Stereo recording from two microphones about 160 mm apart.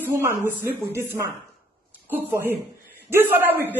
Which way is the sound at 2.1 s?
10° right (ahead or behind).